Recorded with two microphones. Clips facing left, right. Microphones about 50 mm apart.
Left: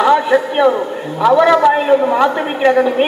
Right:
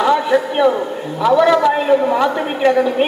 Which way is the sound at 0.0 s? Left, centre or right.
Left.